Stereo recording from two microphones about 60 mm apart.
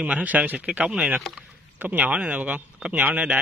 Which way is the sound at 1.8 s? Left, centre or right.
Right.